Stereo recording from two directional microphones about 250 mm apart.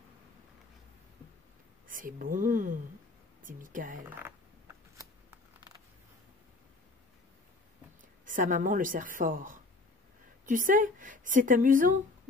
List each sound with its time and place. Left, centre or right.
1.9 s speech: right
8.3 s speech: right